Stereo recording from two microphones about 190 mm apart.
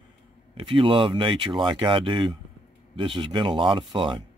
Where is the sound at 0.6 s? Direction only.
30° right (ahead or behind).